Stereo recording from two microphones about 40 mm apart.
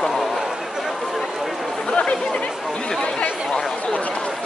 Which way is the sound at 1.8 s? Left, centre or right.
Left.